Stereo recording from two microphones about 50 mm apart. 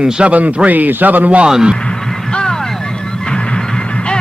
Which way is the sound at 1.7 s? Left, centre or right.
Centre.